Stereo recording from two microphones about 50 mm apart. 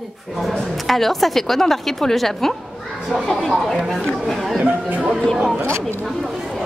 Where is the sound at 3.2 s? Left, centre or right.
Centre.